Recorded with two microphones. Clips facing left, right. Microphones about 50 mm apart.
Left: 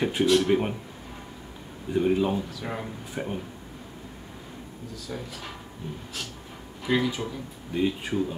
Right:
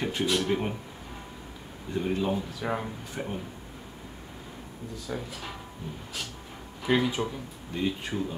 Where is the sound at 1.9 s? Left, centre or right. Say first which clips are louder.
Left 5 dB; centre.